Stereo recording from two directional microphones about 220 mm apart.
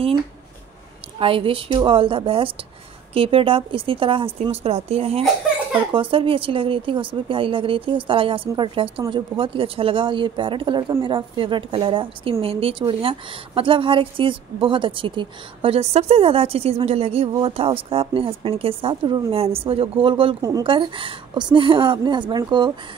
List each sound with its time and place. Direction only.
1.2 s speech: 25° right (ahead or behind)